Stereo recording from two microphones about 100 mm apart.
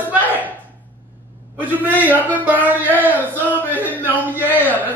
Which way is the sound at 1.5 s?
15° right (ahead or behind).